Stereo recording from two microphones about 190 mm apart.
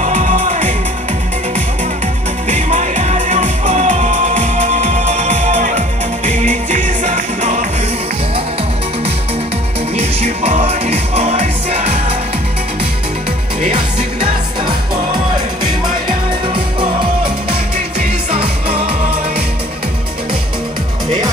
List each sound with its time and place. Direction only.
0.0 s music: 40° right (ahead or behind)
2.4 s music: 40° right (ahead or behind)
9.9 s music: 35° right (ahead or behind)
13.7 s music: 25° right (ahead or behind)
18.3 s music: 30° right (ahead or behind)